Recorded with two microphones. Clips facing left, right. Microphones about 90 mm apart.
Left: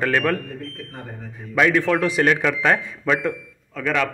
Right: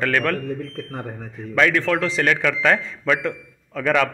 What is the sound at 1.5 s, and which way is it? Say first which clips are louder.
A man's voice: left 1 dB; 15° left (ahead or behind).